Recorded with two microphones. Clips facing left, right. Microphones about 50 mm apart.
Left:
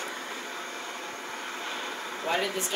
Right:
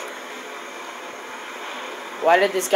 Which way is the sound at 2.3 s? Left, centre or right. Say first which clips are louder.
Right 13 dB; right.